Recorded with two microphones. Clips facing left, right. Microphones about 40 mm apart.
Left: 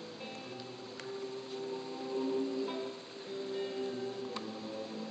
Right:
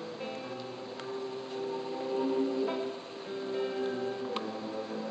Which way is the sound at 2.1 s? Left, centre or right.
Right.